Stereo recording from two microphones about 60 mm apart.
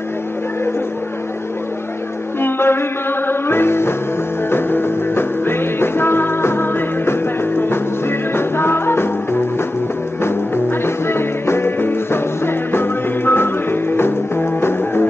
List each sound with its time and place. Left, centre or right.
2.4 s music: left